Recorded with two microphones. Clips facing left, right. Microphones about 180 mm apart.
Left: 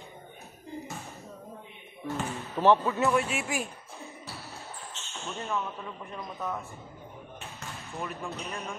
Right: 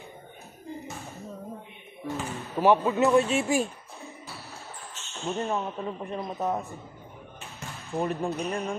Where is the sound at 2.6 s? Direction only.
15° right (ahead or behind).